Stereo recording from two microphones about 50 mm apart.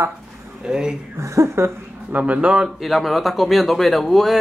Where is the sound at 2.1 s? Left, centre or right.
Right.